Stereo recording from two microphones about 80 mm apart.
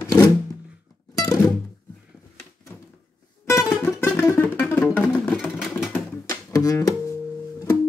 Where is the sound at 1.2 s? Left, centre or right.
Left.